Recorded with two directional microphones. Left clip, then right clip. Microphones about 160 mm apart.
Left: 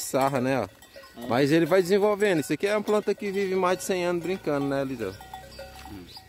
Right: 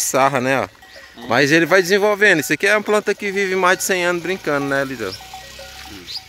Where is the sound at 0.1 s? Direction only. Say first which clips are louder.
Right 8 dB; 5° right (ahead or behind).